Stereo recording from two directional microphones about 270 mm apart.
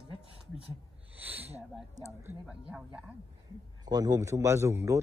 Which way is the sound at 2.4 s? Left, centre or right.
Centre.